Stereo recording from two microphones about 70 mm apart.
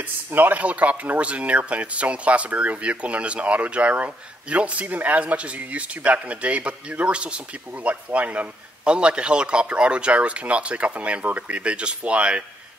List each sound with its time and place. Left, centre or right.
0.0 s a man's voice: right